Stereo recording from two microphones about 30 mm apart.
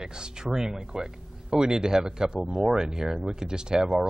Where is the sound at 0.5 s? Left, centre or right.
Centre.